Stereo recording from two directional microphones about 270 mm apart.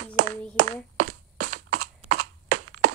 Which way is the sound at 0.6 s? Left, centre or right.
Right.